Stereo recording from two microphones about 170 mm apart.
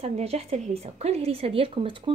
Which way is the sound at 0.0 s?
35° right (ahead or behind).